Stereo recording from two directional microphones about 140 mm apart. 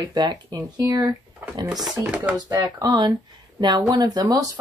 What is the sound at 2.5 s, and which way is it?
Speech, 25° right (ahead or behind).